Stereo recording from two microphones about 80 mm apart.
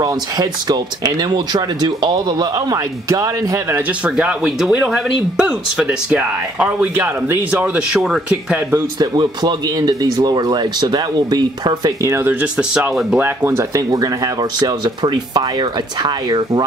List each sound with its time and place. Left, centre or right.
0.0 s speech: right
3.1 s speech: right
4.0 s speech: centre
8.0 s speech: centre
9.0 s speech: right
12.3 s speech: centre
13.2 s speech: right
14.6 s speech: right
16.0 s speech: right